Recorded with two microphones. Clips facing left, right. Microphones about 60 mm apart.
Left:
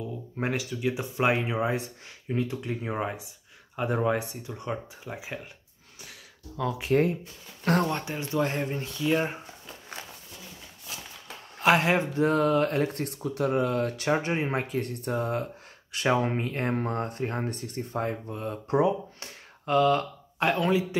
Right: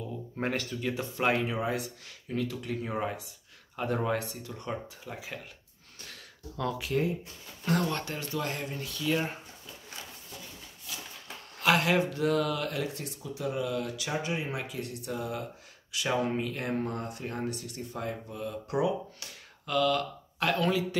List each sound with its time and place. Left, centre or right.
0.4 s speech: centre
6.0 s a sound: centre
7.9 s speech: centre
9.0 s speech: left
11.6 s speech: left